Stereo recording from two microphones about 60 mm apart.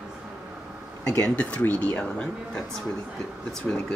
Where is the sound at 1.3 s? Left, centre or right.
Left.